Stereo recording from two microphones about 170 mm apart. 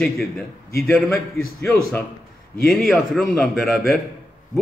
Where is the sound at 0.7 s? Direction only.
15° left (ahead or behind).